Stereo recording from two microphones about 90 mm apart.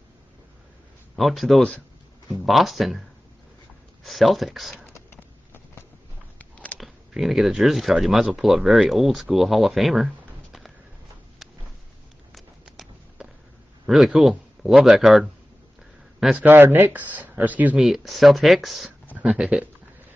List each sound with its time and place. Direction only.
1.1 s speech: centre (ahead or behind)
4.0 s speech: centre (ahead or behind)
6.3 s a sound: 15° left (ahead or behind)
6.8 s speech: centre (ahead or behind)
12.4 s a sound: 5° right (ahead or behind)
13.8 s speech: 5° right (ahead or behind)
16.3 s speech: 25° right (ahead or behind)
17.7 s speech: centre (ahead or behind)